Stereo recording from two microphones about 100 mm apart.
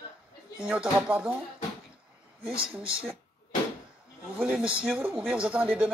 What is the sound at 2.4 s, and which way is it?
Speech, 65° right (ahead or behind).